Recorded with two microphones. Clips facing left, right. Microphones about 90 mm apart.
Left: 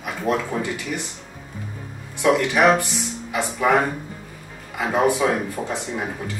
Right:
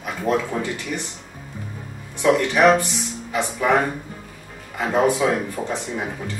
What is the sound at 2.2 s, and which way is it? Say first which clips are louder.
Speech: right 1 dB; 5° left (ahead or behind).